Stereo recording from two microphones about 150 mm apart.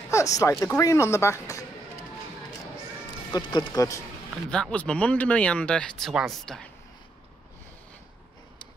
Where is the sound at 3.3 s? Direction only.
30° left (ahead or behind).